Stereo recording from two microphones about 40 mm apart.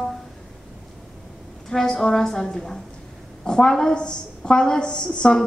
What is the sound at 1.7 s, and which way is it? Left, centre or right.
A woman's voice, centre.